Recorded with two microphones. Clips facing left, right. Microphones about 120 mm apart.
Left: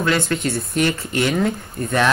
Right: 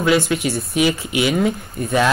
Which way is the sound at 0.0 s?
10° right (ahead or behind).